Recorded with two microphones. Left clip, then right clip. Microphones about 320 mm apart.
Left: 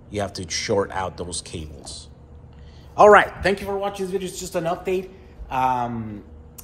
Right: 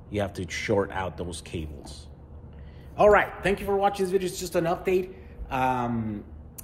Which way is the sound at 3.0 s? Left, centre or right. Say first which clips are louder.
Left 7 dB; left.